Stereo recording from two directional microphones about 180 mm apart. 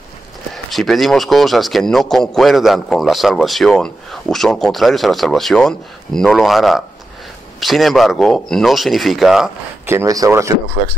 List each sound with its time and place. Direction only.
0.7 s a man's voice: centre (ahead or behind)
9.8 s speech: 15° right (ahead or behind)